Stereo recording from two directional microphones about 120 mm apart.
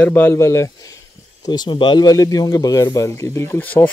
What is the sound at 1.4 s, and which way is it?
Speech, 35° left (ahead or behind).